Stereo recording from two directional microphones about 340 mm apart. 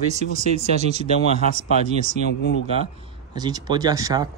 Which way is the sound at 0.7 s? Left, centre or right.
Centre.